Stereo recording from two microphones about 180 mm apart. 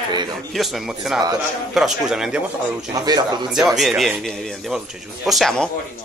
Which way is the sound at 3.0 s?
20° right (ahead or behind).